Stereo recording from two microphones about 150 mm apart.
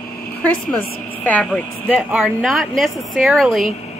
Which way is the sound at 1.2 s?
10° left (ahead or behind).